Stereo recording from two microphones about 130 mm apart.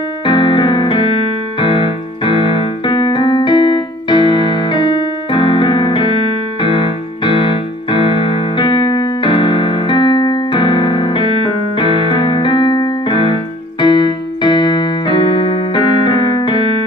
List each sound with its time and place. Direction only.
0.2 s piano: 40° left (ahead or behind)
1.6 s keyboard: 40° left (ahead or behind)
6.6 s music: 40° left (ahead or behind)